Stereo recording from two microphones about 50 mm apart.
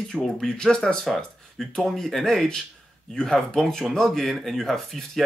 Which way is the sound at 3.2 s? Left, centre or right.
Centre.